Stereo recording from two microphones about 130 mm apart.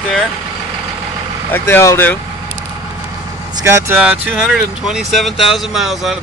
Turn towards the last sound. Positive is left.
turn(degrees=0)  # may be behind; listen again after turning